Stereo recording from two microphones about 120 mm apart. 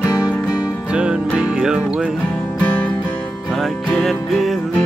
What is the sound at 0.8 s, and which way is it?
Music, 10° right (ahead or behind).